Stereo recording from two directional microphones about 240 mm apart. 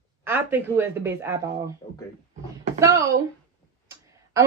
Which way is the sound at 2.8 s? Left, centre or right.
Centre.